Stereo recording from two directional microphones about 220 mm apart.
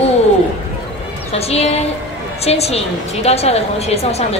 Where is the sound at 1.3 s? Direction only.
30° left (ahead or behind).